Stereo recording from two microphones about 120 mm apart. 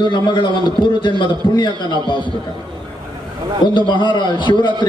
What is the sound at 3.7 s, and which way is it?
A man's voice, 40° left (ahead or behind).